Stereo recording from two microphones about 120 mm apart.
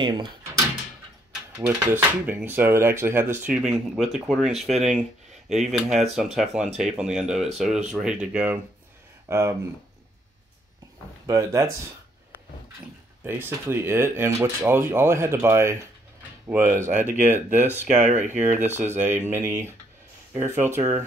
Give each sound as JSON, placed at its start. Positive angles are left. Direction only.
{"t": 0.0, "sound": "speech", "side_deg": -40}
{"t": 1.7, "sound": "speech", "side_deg": -15}
{"t": 9.3, "sound": "speech", "side_deg": -20}
{"t": 11.2, "sound": "speech", "side_deg": -25}
{"t": 13.2, "sound": "speech", "side_deg": -20}
{"t": 18.0, "sound": "speech", "side_deg": -85}
{"t": 18.9, "sound": "speech", "side_deg": -15}